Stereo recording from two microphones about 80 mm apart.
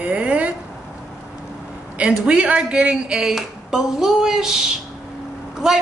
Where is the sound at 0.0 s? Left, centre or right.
Centre.